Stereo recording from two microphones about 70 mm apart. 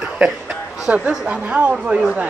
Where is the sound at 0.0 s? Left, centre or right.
Centre.